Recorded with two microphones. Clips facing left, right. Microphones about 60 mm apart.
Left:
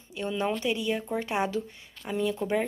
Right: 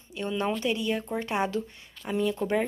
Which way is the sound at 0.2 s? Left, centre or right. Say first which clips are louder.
Even; centre.